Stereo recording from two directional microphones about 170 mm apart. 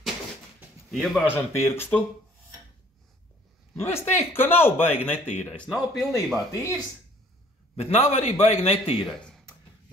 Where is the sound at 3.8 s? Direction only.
15° left (ahead or behind).